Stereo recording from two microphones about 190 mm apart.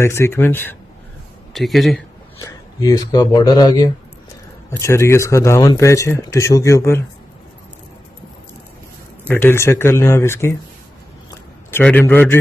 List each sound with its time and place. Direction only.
0.0 s speech: 15° left (ahead or behind)
1.5 s speech: centre (ahead or behind)
2.4 s speech: 20° left (ahead or behind)
9.3 s speech: 10° left (ahead or behind)
11.2 s a sound: 10° left (ahead or behind)